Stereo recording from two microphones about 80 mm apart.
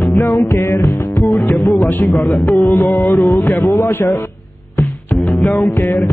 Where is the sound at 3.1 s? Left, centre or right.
Left.